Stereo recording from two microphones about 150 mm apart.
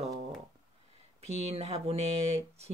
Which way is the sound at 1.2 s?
45° right (ahead or behind).